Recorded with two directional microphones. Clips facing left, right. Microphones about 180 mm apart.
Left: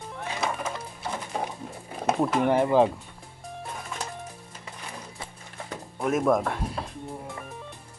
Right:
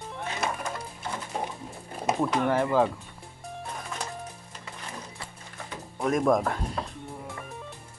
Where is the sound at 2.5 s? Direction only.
20° left (ahead or behind).